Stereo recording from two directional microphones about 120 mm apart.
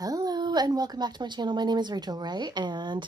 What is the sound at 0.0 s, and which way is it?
Speech, 30° right (ahead or behind).